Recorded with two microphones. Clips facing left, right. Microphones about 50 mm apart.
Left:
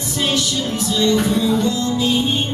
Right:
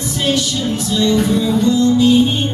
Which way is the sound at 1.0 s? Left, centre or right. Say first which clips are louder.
Right 2 dB; centre.